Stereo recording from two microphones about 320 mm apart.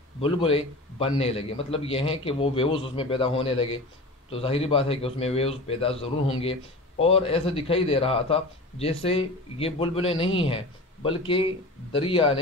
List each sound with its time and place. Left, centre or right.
0.2 s a man's voice: centre